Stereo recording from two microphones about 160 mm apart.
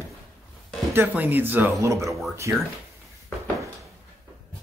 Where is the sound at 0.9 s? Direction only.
15° right (ahead or behind).